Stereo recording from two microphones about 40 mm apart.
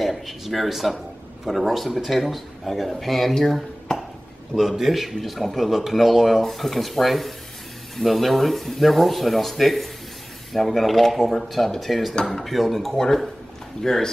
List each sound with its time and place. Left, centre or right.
0.0 s a man's voice: centre
4.7 s a man's voice: centre
12.9 s speech: centre